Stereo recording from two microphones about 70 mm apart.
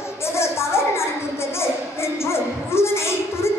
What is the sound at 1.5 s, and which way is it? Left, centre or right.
Music, left.